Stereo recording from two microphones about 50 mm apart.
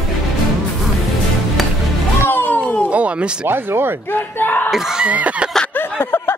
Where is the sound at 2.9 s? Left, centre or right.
Right.